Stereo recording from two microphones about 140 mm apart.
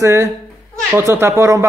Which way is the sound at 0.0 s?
20° right (ahead or behind).